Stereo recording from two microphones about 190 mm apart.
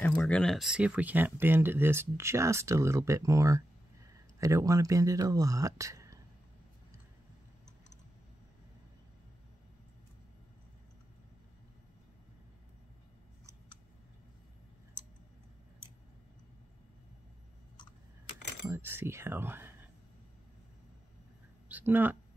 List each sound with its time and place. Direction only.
0.0 s speech: 5° left (ahead or behind); by 6.2 s 15° right (ahead or behind)
18.7 s speech: 10° right (ahead or behind)
21.6 s a sound: 10° right (ahead or behind)